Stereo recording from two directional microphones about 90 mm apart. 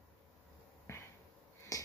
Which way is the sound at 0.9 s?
30° left (ahead or behind).